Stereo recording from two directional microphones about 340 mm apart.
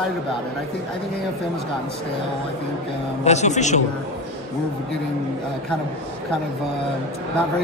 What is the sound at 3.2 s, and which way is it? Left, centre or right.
Speech, centre.